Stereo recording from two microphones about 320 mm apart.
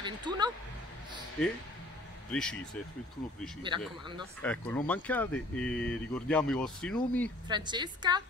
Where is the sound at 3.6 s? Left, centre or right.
Centre.